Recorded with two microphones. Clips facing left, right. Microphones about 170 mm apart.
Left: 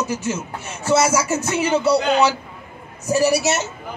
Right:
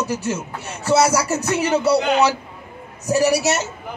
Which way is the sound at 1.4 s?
Centre (ahead or behind).